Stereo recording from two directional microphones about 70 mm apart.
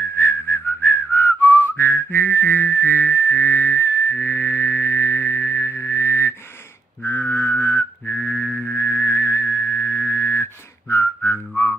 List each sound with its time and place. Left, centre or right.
0.0 s whistling: left
8.5 s a sound: centre
8.7 s music: left